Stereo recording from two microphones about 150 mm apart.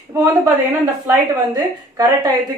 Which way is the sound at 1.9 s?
25° right (ahead or behind).